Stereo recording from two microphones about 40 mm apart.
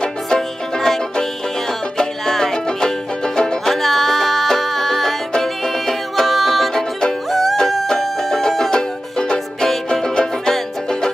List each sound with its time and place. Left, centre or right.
0.0 s music: centre
3.6 s music: centre
6.7 s music: centre
7.2 s music: centre